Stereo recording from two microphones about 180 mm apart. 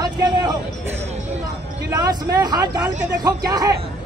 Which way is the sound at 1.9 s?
20° right (ahead or behind).